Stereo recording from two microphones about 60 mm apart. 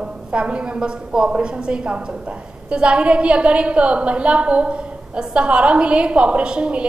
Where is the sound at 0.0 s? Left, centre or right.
Centre.